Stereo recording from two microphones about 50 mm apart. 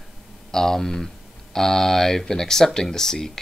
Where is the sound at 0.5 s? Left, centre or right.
Centre.